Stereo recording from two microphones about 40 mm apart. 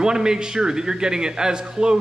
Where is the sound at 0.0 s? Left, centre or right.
Centre.